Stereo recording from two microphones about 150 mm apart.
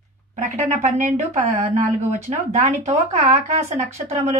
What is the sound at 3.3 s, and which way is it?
Speech, 55° right (ahead or behind).